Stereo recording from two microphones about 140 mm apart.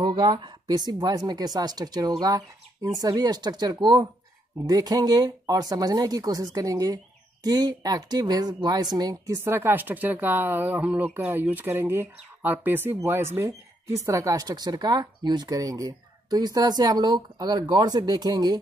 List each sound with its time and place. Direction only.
0.0 s speech: 35° right (ahead or behind)